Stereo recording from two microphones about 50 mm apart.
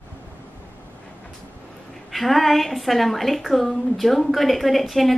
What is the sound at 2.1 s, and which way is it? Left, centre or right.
A woman's voice, centre.